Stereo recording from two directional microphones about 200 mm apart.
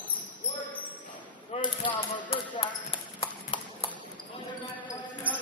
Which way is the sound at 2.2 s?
25° left (ahead or behind).